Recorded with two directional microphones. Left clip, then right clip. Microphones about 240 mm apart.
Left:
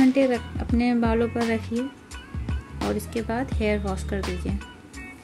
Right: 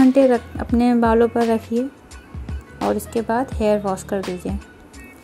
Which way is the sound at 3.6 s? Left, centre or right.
Centre.